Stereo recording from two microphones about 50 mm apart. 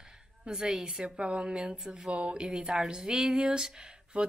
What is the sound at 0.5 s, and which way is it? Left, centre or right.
Speech, centre.